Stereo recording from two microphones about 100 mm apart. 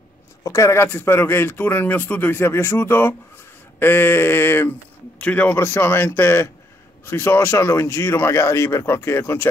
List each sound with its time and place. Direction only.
0.4 s speech: 30° left (ahead or behind)